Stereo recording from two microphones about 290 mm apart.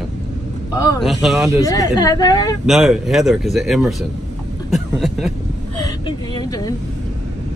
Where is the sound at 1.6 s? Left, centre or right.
Centre.